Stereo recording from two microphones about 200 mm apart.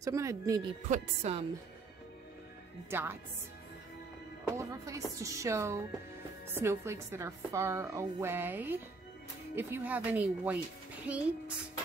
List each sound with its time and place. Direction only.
0.0 s a woman's voice: 15° right (ahead or behind)
0.8 s speech: 35° right (ahead or behind)
2.9 s a woman's voice: 10° right (ahead or behind)
4.6 s a woman's voice: 15° right (ahead or behind)